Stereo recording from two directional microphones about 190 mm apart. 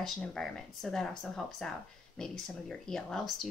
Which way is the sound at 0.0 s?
5° left (ahead or behind).